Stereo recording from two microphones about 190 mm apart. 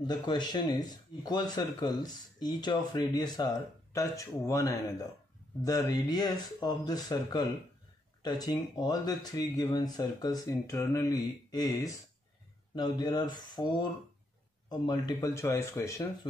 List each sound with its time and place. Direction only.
0.0 s speech: 20° left (ahead or behind)